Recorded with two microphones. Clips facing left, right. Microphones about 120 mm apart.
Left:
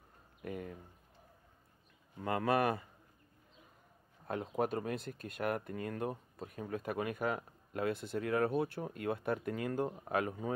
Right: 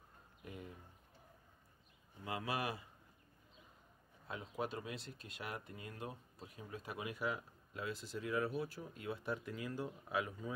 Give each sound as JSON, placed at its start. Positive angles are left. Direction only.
{"t": 0.4, "sound": "speech", "side_deg": 60}
{"t": 2.2, "sound": "speech", "side_deg": 55}
{"t": 4.3, "sound": "speech", "side_deg": 55}